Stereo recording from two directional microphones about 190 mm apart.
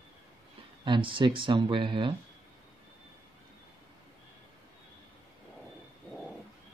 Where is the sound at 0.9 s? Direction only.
25° right (ahead or behind).